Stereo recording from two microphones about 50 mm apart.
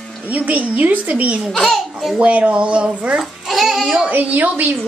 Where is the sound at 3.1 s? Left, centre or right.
Centre.